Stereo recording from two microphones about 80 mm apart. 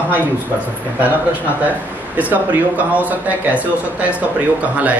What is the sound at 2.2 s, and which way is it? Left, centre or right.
Speech, right.